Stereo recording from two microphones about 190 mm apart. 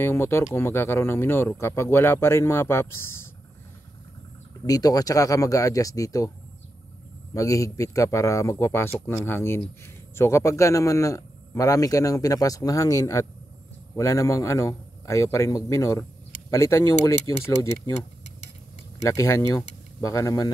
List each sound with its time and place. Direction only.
0.0 s speech: 15° left (ahead or behind)
4.6 s speech: 20° left (ahead or behind)
7.3 s a man's voice: 15° left (ahead or behind)
19.0 s speech: 15° left (ahead or behind)